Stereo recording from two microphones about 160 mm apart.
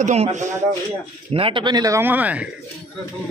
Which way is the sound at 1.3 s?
35° right (ahead or behind).